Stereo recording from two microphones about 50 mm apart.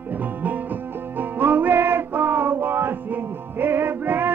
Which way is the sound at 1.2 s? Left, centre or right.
Right.